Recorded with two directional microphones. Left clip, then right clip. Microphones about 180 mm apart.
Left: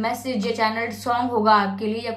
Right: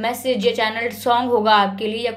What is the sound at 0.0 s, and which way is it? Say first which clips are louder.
A woman's voice: right 6 dB; 30° right (ahead or behind).